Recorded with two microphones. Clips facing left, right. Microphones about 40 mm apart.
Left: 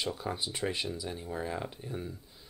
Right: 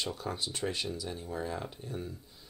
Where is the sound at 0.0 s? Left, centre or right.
Centre.